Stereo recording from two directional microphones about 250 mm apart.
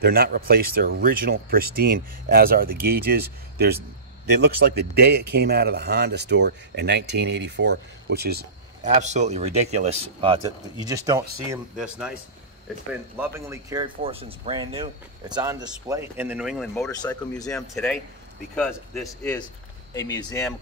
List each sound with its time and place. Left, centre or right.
0.0 s a man's voice: right; by 12.2 s centre
13.2 s speech: centre
16.7 s speech: centre
17.5 s speech: centre
19.4 s speech: centre